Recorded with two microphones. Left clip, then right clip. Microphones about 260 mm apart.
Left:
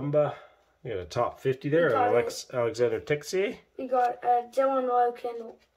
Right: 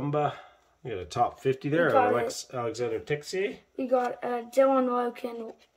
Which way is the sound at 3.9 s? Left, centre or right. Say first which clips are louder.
Left 3 dB; right.